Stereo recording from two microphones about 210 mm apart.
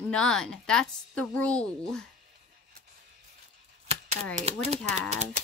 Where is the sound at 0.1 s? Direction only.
5° left (ahead or behind).